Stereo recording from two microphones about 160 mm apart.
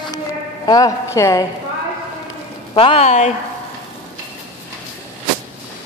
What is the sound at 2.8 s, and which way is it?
Speech, 40° left (ahead or behind).